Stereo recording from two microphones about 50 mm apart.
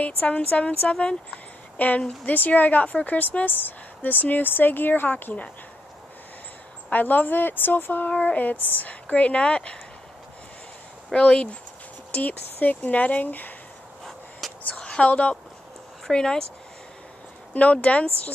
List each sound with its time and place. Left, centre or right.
0.0 s a woman's voice: left
6.9 s a woman's voice: left
8.1 s speech: left
11.1 s speech: centre
12.1 s a woman's voice: left
14.4 s a sound: centre
14.8 s a woman's voice: left
16.1 s speech: centre
17.6 s speech: left